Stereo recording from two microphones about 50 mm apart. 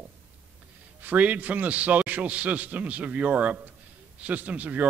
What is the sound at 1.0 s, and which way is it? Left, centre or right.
A man's voice, right.